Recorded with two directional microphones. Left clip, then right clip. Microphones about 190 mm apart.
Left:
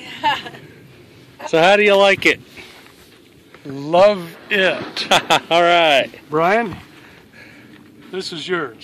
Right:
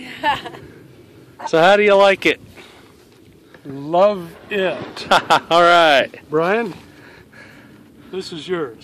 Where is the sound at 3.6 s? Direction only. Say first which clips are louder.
Left 2 dB; 25° left (ahead or behind); by 5.5 s centre (ahead or behind).